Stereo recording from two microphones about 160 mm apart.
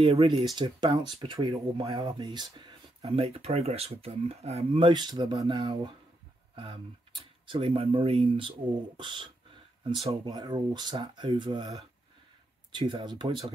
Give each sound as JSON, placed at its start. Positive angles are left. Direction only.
{"t": 0.0, "sound": "speech", "side_deg": -40}
{"t": 0.6, "sound": "speech", "side_deg": -30}